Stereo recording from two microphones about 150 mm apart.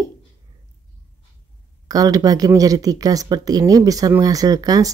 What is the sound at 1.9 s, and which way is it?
Speech, 25° right (ahead or behind).